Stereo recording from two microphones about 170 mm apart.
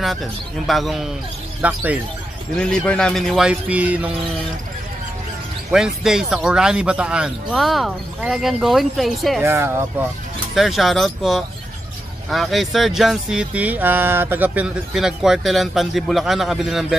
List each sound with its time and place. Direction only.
0.0 s speech: centre (ahead or behind)
2.5 s speech: 5° left (ahead or behind)
5.7 s speech: 5° right (ahead or behind)
9.4 s speech: 15° right (ahead or behind)
10.5 s speech: centre (ahead or behind)